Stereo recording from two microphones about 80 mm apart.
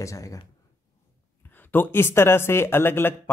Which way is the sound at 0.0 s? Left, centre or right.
Left.